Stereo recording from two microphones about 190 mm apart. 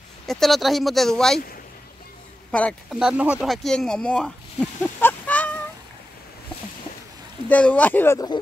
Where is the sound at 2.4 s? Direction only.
5° left (ahead or behind).